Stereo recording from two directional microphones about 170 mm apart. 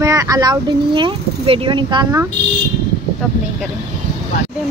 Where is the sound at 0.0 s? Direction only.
20° right (ahead or behind).